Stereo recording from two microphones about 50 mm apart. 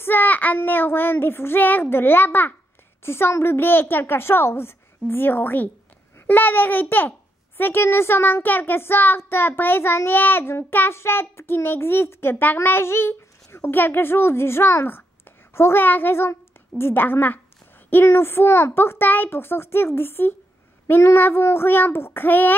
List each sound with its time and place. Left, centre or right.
0.0 s child singing: left
0.6 s a woman's voice: left
3.0 s a woman's voice: left
7.8 s a woman's voice: left
10.9 s a woman's voice: left